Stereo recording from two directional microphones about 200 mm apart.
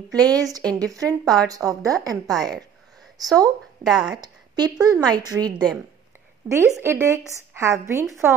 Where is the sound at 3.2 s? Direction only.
20° right (ahead or behind).